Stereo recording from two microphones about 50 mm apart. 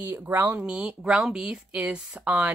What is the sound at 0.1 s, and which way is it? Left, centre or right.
Speech, right.